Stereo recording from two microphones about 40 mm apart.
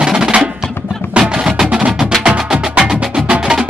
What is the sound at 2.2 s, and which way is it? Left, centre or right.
Music, right.